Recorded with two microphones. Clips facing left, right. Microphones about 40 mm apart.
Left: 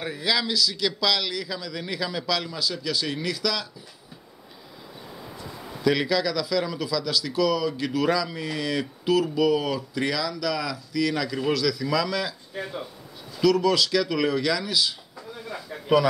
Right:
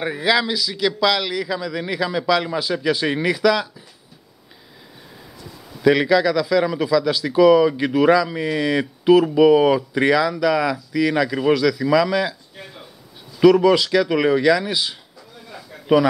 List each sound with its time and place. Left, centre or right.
0.0 s a man's voice: centre
5.9 s a man's voice: centre
13.4 s a man's voice: right